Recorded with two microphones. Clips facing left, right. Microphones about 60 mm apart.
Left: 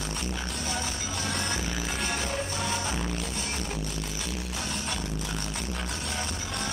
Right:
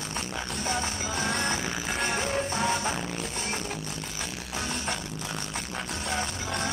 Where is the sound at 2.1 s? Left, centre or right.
Right.